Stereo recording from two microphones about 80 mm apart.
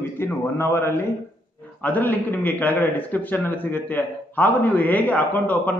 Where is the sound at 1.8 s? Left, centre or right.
Left.